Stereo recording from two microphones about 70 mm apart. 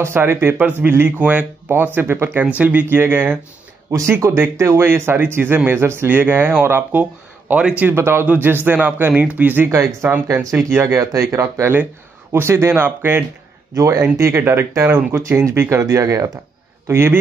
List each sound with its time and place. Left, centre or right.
0.0 s speech: right
2.0 s speech: right
2.4 s speech: right
4.4 s speech: right
7.9 s speech: right
9.7 s speech: right
11.1 s speech: right
13.7 s speech: right
14.1 s speech: right
16.8 s speech: right